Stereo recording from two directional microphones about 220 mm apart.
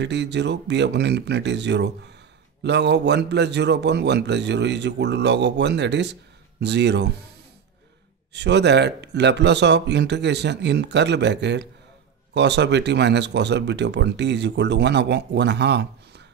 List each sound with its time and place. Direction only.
0.0 s a man's voice: 50° right (ahead or behind)
8.3 s a man's voice: 50° right (ahead or behind)